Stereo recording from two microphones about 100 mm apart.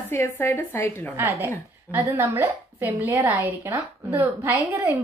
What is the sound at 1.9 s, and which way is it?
A woman's voice, 25° right (ahead or behind).